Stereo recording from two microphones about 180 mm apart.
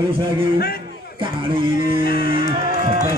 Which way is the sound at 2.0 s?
55° left (ahead or behind).